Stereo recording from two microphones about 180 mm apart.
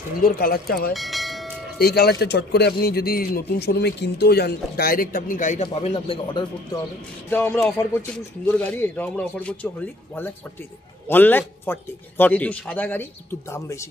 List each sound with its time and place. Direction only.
0.2 s speech: 55° left (ahead or behind)
0.9 s bell: centre (ahead or behind)
1.8 s speech: 65° left (ahead or behind); by 6.8 s 25° left (ahead or behind)
7.2 s a man's voice: 10° left (ahead or behind)